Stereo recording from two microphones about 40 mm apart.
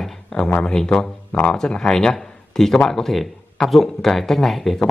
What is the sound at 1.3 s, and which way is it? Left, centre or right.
A man's voice, left.